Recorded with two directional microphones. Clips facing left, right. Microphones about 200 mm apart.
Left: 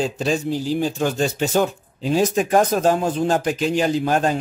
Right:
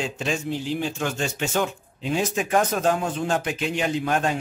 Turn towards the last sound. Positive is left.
turn(degrees=35)  # may be behind; listen again after turning